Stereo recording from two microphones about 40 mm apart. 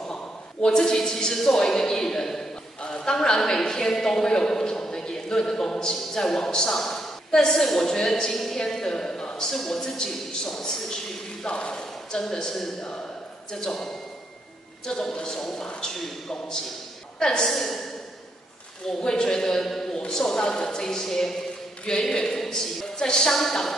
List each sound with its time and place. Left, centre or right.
0.1 s a man's voice: centre
14.9 s a woman's voice: centre
17.5 s a woman's voice: centre
18.9 s a woman's voice: centre